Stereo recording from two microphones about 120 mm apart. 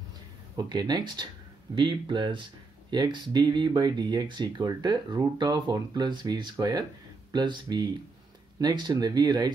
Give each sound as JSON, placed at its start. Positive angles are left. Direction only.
{"t": 0.6, "sound": "speech", "side_deg": -35}